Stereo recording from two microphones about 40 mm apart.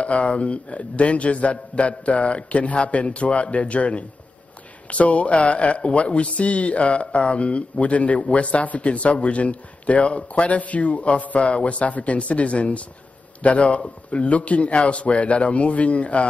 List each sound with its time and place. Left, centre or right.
0.0 s a man's voice: left